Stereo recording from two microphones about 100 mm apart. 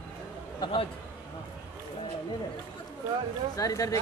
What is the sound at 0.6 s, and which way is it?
Speech, 55° left (ahead or behind).